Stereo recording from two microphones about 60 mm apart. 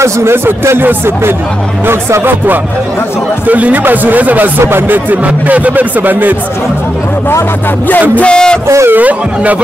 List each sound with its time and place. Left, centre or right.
0.0 s speech: right
3.4 s speech: right
8.2 s speech: centre
8.8 s speech: right